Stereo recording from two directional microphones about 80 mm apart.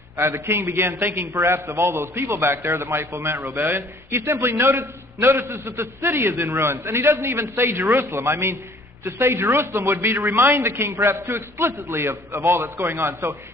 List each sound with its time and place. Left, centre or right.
0.2 s a man's voice: right